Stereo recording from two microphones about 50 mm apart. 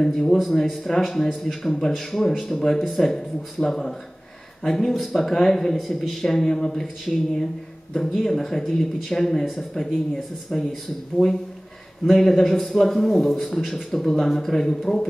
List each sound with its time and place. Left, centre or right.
0.0 s a man's voice: centre; by 11.3 s left
12.1 s speech: centre